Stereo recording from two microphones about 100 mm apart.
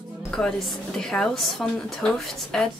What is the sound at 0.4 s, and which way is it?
A woman's voice, 5° left (ahead or behind).